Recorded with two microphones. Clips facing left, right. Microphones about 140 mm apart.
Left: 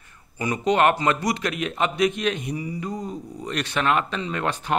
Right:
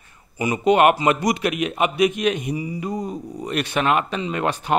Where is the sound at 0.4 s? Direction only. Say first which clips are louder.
Right 4 dB; 15° right (ahead or behind).